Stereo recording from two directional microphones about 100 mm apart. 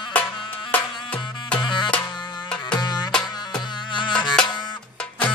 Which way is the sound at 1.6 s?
50° left (ahead or behind).